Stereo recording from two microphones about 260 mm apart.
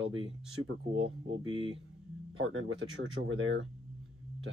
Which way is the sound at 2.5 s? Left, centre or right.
Right.